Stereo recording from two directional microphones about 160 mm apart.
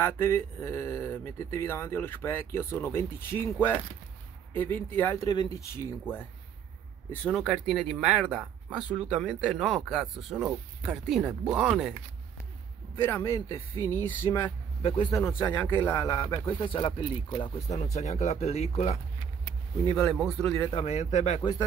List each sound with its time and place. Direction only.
0.0 s speech: 15° left (ahead or behind)
7.1 s speech: 5° left (ahead or behind)
13.0 s speech: 15° left (ahead or behind)
14.8 s speech: 35° left (ahead or behind)
15.1 s speech: 15° left (ahead or behind)
16.4 s speech: 30° left (ahead or behind)
17.9 s speech: 45° left (ahead or behind)
20.0 s speech: centre (ahead or behind)
20.7 s speech: 40° left (ahead or behind)